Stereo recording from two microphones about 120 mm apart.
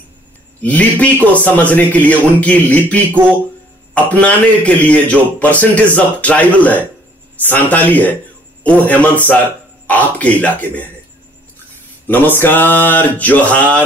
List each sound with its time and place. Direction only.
0.6 s a man's voice: 10° left (ahead or behind)
12.1 s a man's voice: 15° left (ahead or behind)